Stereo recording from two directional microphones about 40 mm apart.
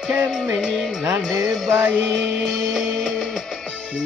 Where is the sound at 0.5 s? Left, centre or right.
Centre.